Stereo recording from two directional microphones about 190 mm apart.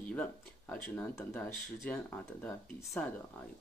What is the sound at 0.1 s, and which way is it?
Speech, 10° left (ahead or behind).